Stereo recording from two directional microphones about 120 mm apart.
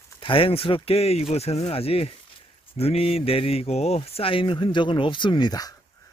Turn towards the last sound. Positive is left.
turn(degrees=30)  # may be behind; listen again after turning